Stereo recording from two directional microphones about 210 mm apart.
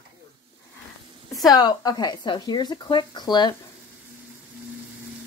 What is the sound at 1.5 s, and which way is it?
Speech, 20° left (ahead or behind).